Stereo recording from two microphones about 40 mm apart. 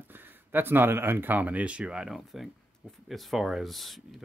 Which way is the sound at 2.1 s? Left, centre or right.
Centre.